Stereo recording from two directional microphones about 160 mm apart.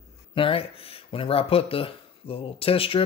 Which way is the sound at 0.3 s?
35° left (ahead or behind).